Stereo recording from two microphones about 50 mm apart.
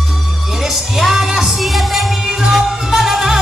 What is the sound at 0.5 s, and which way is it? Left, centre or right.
Music, centre.